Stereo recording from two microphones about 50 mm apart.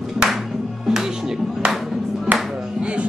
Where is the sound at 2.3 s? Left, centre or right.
Right.